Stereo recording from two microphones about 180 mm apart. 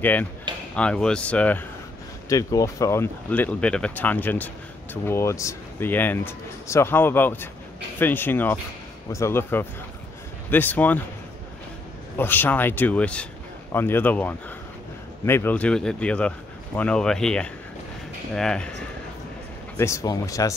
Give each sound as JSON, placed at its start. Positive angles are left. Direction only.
{"t": 0.0, "sound": "speech", "side_deg": 10}
{"t": 2.2, "sound": "speech", "side_deg": 20}
{"t": 12.2, "sound": "speech", "side_deg": 10}
{"t": 19.8, "sound": "speech", "side_deg": 15}